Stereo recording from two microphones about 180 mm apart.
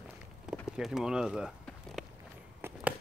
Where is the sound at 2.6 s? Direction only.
15° right (ahead or behind).